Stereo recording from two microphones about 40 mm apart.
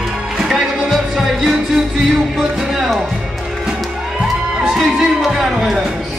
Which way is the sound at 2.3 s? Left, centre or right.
Centre.